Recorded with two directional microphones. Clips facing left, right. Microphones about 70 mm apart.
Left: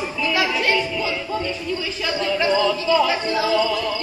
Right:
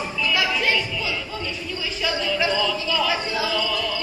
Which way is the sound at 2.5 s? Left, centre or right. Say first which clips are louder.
Left 5 dB; left.